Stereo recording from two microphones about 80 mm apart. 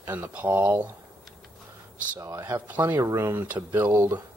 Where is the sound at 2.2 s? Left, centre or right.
Right.